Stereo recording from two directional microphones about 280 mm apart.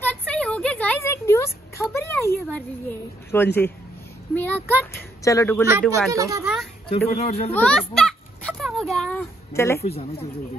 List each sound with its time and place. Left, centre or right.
0.3 s a sound: centre
3.3 s speech: centre
5.7 s speech: centre
7.1 s speech: left
7.5 s a sound: centre
9.8 s speech: left